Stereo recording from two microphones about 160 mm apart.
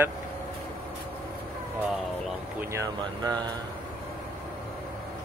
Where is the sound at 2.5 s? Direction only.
20° right (ahead or behind).